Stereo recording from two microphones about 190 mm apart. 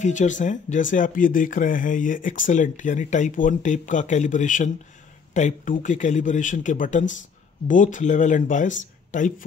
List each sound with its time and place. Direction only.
0.0 s speech: 40° left (ahead or behind)